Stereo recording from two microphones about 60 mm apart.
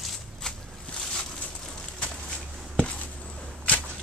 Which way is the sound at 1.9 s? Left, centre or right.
Centre.